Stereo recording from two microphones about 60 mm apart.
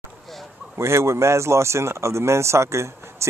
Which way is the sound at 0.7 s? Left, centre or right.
Right.